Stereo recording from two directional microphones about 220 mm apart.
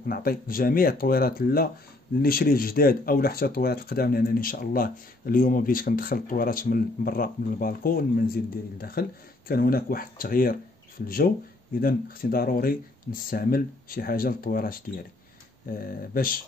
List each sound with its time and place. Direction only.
0.0 s speech: 45° left (ahead or behind)